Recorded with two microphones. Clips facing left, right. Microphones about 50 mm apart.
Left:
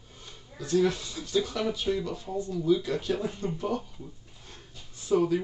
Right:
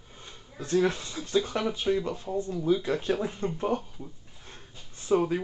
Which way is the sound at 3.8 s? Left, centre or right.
Centre.